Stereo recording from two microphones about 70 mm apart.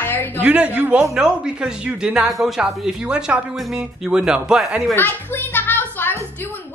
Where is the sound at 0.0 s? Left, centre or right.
Left.